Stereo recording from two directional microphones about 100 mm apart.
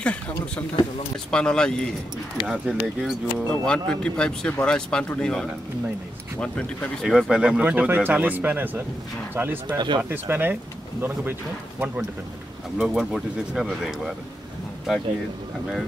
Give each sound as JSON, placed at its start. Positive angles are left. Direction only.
{"t": 0.0, "sound": "speech", "side_deg": 10}
{"t": 2.4, "sound": "speech", "side_deg": -5}
{"t": 3.6, "sound": "speech", "side_deg": 10}
{"t": 9.8, "sound": "speech", "side_deg": -45}
{"t": 10.0, "sound": "speech", "side_deg": -20}
{"t": 12.7, "sound": "speech", "side_deg": -5}